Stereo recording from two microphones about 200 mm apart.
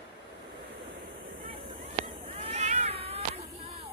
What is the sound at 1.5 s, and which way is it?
Cat, 30° right (ahead or behind).